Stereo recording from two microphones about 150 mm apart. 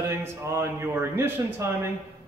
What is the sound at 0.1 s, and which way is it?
Speech, 20° right (ahead or behind).